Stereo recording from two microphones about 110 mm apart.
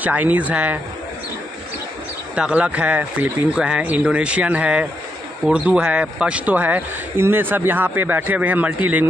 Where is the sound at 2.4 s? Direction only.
10° right (ahead or behind).